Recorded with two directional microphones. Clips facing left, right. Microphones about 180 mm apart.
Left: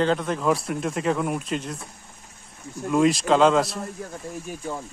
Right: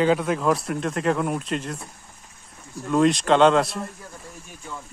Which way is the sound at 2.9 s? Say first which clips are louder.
Right 1 dB; 5° left (ahead or behind).